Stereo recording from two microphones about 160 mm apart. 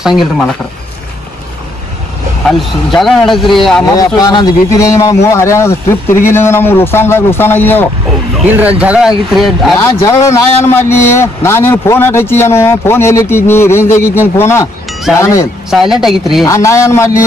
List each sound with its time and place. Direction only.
2.4 s speech: centre (ahead or behind)
3.9 s a man's voice: 25° left (ahead or behind)
8.5 s speech: 10° right (ahead or behind)
9.8 s a man's voice: 15° left (ahead or behind)
15.7 s speech: centre (ahead or behind)
16.4 s a man's voice: 20° left (ahead or behind)